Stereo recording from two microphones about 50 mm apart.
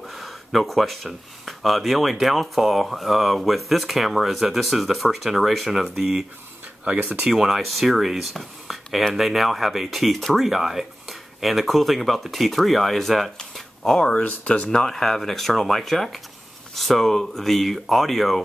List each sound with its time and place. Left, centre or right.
0.1 s speech: centre
6.8 s speech: right
7.2 s speech: centre
13.6 s a sound: centre
14.2 s speech: left
14.7 s speech: centre